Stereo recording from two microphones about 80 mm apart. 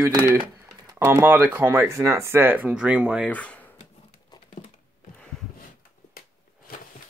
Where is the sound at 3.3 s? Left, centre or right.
Centre.